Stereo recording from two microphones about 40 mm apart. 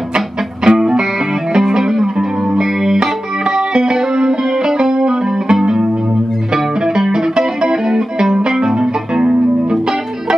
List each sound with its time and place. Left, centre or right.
0.7 s music: centre
7.1 s music: centre